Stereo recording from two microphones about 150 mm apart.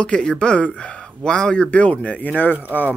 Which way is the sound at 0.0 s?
5° left (ahead or behind).